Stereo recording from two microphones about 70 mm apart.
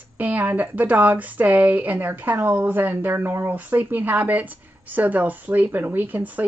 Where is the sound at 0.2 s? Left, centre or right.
Right.